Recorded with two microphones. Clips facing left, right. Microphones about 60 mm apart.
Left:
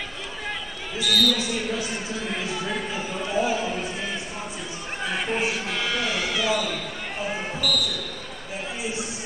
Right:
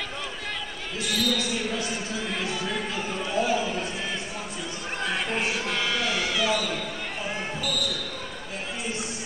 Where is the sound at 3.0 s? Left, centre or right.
Centre.